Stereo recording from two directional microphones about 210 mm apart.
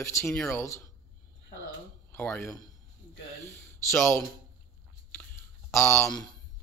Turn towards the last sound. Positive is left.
turn(degrees=15)  # may be behind; listen again after turning